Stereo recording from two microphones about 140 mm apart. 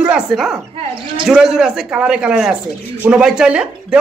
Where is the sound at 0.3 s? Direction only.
Centre (ahead or behind).